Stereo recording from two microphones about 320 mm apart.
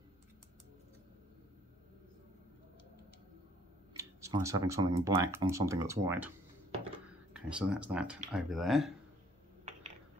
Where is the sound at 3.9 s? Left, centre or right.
Centre.